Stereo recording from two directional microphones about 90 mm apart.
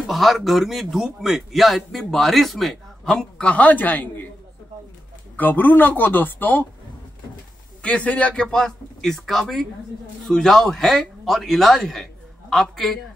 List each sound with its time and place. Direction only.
0.0 s a man's voice: centre (ahead or behind); by 4.3 s 20° left (ahead or behind)
5.3 s speech: 20° left (ahead or behind)
7.8 s a man's voice: 15° left (ahead or behind)